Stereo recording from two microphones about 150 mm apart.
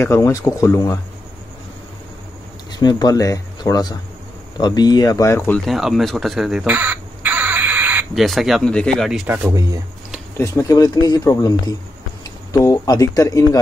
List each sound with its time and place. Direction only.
0.0 s speech: 20° left (ahead or behind)
2.7 s speech: 25° left (ahead or behind)
5.7 s a sound: centre (ahead or behind)
8.1 s speech: centre (ahead or behind)
9.5 s speech: 25° right (ahead or behind)
10.3 s speech: 20° left (ahead or behind)